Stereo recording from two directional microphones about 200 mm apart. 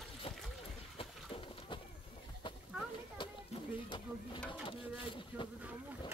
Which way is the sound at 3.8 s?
25° left (ahead or behind).